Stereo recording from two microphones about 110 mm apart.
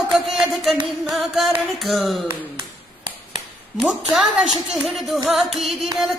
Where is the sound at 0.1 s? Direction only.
Centre (ahead or behind).